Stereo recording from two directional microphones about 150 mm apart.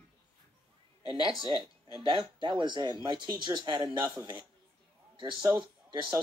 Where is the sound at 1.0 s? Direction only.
30° left (ahead or behind).